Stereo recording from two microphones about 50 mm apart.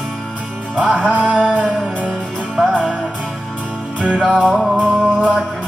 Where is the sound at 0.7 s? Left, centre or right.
Right.